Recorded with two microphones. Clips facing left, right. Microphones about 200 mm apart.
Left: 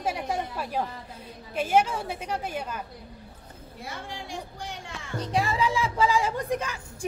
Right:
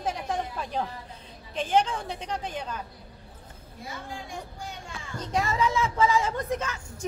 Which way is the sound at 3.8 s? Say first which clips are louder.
Even; 80° left.